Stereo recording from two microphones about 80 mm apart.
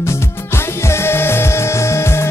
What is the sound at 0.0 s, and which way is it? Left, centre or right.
Music, left.